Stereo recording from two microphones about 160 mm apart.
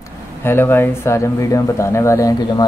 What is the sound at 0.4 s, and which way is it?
Speech, 15° left (ahead or behind).